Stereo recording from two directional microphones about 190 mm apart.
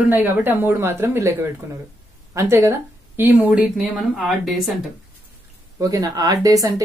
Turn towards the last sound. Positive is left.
turn(degrees=-20)  # may be behind; listen again after turning